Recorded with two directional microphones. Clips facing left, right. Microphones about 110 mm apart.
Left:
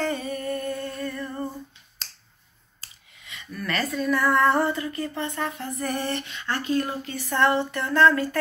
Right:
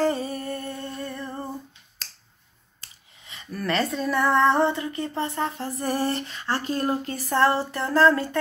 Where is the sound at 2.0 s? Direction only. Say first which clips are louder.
Left 1 dB; 25° left (ahead or behind).